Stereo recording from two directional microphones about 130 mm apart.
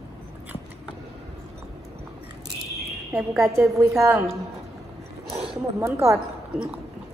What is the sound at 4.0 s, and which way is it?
Speech, 20° right (ahead or behind).